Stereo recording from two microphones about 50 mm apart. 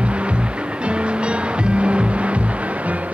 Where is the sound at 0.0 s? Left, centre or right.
Right.